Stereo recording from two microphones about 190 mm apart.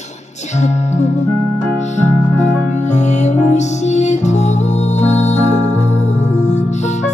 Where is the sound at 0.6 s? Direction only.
40° left (ahead or behind).